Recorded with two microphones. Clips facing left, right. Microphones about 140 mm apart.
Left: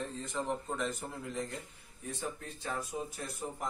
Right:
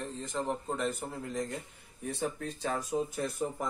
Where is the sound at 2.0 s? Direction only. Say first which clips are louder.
Right 6 dB; 85° right.